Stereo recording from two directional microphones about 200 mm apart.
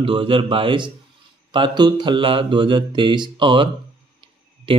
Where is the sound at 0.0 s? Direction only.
25° right (ahead or behind).